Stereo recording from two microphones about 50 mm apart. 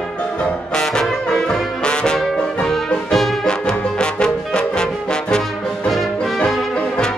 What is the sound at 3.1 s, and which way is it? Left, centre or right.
Music, centre.